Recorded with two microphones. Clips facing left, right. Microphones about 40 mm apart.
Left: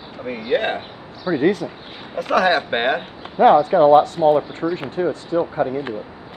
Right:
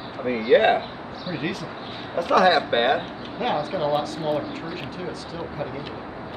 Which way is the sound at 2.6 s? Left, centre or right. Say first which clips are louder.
Left 1 dB; centre.